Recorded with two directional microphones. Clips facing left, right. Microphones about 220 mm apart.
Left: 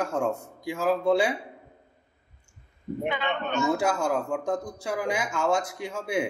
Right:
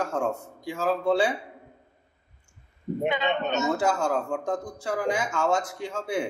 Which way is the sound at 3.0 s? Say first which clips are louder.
Right 3 dB; 20° right (ahead or behind).